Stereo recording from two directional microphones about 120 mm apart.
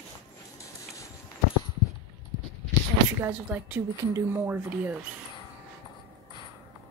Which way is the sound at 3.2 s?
15° right (ahead or behind).